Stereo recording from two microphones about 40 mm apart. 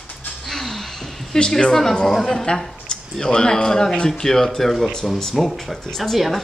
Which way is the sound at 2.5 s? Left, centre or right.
Left.